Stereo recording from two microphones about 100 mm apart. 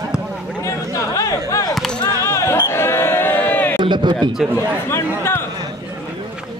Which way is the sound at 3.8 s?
50° right (ahead or behind).